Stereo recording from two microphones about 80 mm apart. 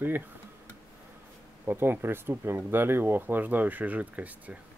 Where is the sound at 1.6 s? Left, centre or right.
Right.